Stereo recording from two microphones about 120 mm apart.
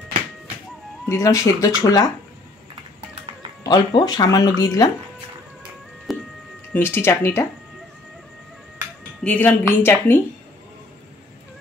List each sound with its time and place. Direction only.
1.0 s speech: 25° left (ahead or behind)
3.6 s speech: 35° left (ahead or behind)
6.1 s music: centre (ahead or behind)
6.7 s speech: 20° left (ahead or behind)
9.2 s a woman's voice: 10° left (ahead or behind)